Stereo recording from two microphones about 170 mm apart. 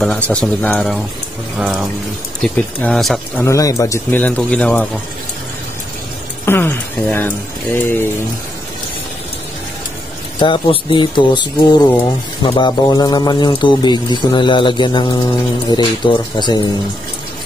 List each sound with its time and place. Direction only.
0.0 s speech: 5° left (ahead or behind)
1.6 s speech: 5° right (ahead or behind)
3.4 s speech: 20° left (ahead or behind)
6.4 s a sound: 15° left (ahead or behind)
10.4 s a man's voice: 30° left (ahead or behind)